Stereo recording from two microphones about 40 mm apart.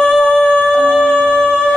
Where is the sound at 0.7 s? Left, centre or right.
Right.